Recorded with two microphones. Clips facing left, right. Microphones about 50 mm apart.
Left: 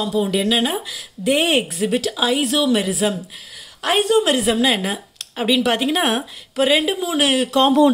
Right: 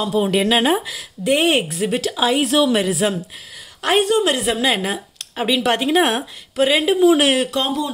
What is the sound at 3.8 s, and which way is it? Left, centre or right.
Speech, centre.